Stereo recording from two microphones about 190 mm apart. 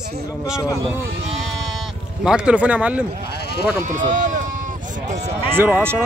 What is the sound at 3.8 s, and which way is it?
Speech, 40° right (ahead or behind).